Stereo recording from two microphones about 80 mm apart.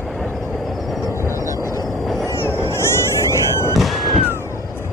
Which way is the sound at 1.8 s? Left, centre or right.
Centre.